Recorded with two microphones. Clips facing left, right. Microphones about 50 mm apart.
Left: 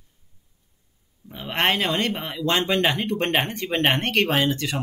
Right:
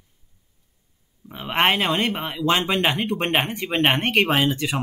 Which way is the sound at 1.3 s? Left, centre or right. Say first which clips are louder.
Right 2 dB; centre.